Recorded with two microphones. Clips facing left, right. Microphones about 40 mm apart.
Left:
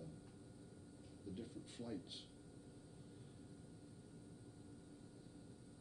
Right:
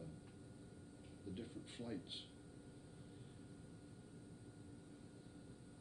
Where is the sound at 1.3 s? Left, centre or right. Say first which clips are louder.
Right 1 dB; right.